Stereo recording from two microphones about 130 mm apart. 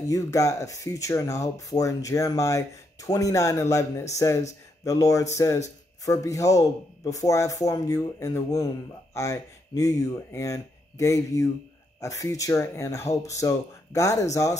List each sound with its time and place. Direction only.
0.1 s speech: 25° left (ahead or behind)